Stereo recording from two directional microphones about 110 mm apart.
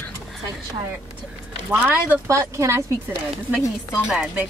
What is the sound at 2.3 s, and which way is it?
Speech, 30° right (ahead or behind).